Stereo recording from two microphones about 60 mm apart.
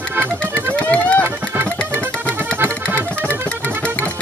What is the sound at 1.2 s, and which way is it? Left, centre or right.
Music, right.